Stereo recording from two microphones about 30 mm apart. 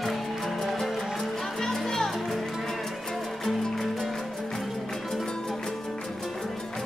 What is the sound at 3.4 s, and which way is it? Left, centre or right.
Music, centre.